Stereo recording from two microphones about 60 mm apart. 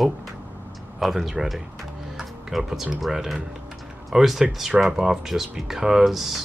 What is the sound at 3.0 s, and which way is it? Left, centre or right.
Speech, centre.